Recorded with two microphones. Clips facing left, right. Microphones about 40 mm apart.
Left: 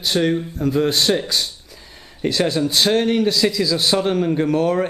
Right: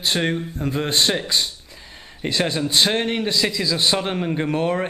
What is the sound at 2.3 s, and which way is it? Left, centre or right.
A man's voice, right.